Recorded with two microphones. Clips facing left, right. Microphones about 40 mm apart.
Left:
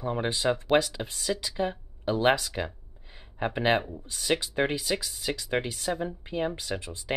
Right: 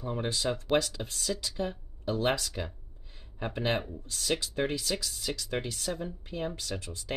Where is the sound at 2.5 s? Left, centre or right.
Left.